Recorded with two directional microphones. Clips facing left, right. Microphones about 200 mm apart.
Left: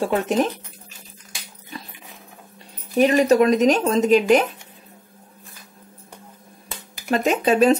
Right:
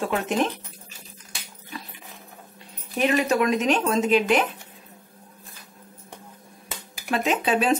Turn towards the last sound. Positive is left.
turn(degrees=40)  # may be behind; listen again after turning